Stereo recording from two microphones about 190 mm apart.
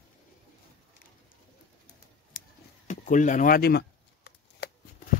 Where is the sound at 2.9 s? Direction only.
40° left (ahead or behind); by 4.7 s 60° left (ahead or behind).